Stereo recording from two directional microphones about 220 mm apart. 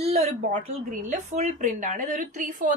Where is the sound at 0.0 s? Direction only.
30° right (ahead or behind).